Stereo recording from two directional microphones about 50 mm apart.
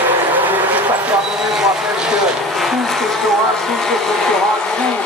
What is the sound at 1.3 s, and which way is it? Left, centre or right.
Vehicle, centre.